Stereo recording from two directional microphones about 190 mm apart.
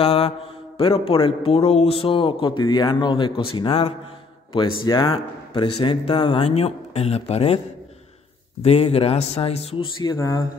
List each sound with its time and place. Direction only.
0.0 s mantra: 30° left (ahead or behind)
0.7 s a man's voice: 30° left (ahead or behind)
8.6 s speech: 30° left (ahead or behind)
10.1 s speech: 15° left (ahead or behind)